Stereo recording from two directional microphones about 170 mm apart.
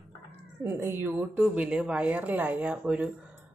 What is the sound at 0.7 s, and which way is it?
A woman's voice, 15° right (ahead or behind).